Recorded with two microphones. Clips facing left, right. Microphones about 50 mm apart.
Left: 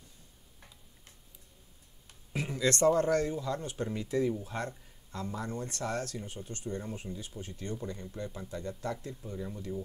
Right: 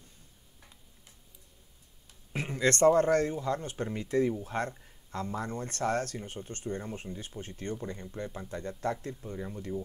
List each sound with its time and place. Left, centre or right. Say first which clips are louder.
2.3 s speech: right 2 dB; right
7.7 s speech: even; right
8.5 s speech: right 5 dB; right
9.2 s speech: right 1 dB; right